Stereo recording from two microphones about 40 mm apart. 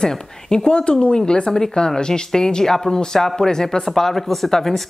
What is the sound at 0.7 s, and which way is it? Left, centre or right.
Speech, left.